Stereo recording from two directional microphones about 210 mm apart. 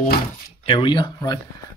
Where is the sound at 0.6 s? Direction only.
25° left (ahead or behind).